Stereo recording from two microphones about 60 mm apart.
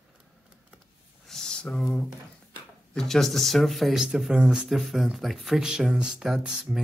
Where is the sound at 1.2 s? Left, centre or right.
Centre.